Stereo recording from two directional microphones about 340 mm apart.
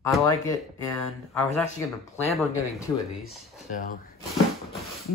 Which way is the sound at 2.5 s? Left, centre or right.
Centre.